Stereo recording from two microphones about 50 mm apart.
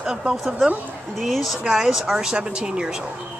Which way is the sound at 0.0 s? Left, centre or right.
Centre.